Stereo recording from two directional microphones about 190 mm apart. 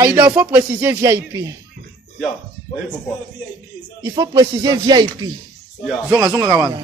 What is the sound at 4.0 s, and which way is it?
Speech, 20° right (ahead or behind).